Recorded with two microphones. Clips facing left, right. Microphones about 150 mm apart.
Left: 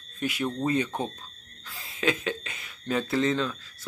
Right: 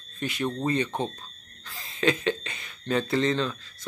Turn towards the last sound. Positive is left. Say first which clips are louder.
# right 1 dB
turn(degrees=5)  # may be behind; listen again after turning